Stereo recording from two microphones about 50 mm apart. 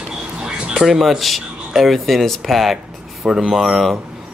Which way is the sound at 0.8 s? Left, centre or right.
Centre.